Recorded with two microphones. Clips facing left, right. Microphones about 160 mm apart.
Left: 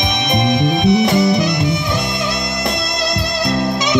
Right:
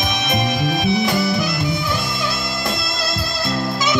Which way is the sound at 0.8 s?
20° left (ahead or behind).